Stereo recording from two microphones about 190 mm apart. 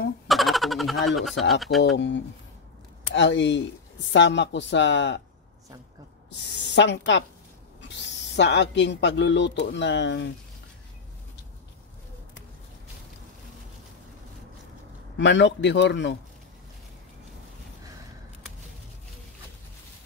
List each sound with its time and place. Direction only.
0.3 s a sound: centre (ahead or behind)
1.5 s speech: centre (ahead or behind)
2.0 s speech: 70° left (ahead or behind)
6.4 s speech: 65° left (ahead or behind)
15.1 s speech: 70° left (ahead or behind)